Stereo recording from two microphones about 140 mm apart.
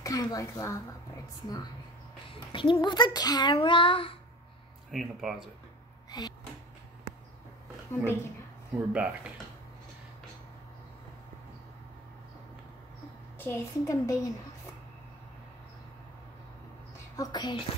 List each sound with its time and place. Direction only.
0.0 s a woman's voice: 25° left (ahead or behind)
2.2 s speech: 35° left (ahead or behind)
3.5 s child singing: 35° left (ahead or behind)
4.9 s speech: centre (ahead or behind)
6.0 s a sound: 30° left (ahead or behind)
7.9 s a woman's voice: 15° left (ahead or behind)
8.7 s speech: 10° right (ahead or behind)
13.4 s a woman's voice: 20° left (ahead or behind)
17.2 s child singing: 30° left (ahead or behind)